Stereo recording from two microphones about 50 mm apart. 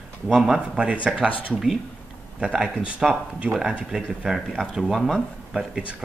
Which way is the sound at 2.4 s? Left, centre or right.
Centre.